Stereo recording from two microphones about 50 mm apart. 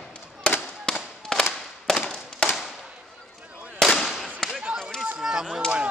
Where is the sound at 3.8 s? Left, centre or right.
Centre.